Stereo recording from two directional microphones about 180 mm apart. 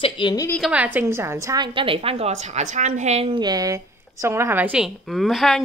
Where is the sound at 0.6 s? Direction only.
10° right (ahead or behind).